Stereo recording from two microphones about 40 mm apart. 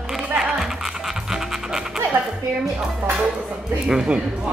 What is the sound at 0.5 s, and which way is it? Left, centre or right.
Music, centre.